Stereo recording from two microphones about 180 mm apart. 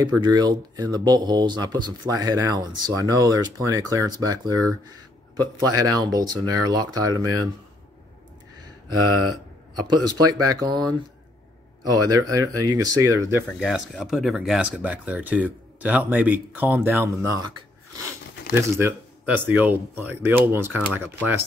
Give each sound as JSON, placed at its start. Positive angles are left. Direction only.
{"t": 0.0, "sound": "speech", "side_deg": -20}
{"t": 5.8, "sound": "speech", "side_deg": -20}
{"t": 9.8, "sound": "speech", "side_deg": -25}
{"t": 11.8, "sound": "speech", "side_deg": -20}
{"t": 18.5, "sound": "speech", "side_deg": -15}